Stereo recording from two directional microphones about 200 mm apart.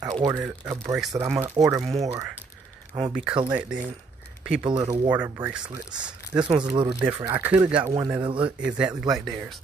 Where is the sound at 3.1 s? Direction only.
5° right (ahead or behind).